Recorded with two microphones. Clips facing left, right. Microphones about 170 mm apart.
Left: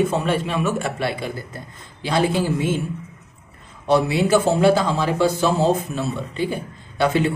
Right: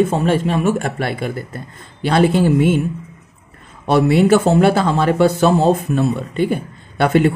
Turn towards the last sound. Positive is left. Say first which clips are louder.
# right 5 dB
turn(degrees=-60)  # may be behind; listen again after turning